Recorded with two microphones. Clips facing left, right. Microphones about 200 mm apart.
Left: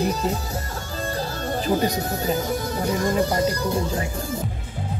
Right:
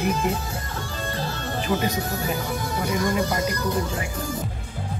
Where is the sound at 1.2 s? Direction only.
40° left (ahead or behind).